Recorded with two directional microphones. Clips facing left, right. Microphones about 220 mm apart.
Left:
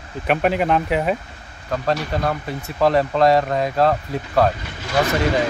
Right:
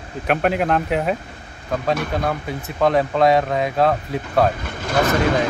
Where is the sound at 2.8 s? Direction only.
Centre (ahead or behind).